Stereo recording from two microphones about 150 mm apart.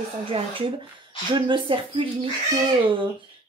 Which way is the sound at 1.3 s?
30° right (ahead or behind).